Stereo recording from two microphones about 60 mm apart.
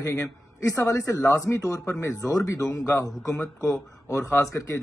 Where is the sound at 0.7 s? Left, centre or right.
Left.